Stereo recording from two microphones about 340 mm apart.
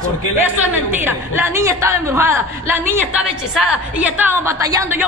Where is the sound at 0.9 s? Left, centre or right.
Centre.